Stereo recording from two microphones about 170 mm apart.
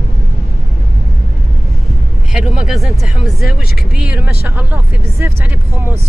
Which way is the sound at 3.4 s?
65° left (ahead or behind).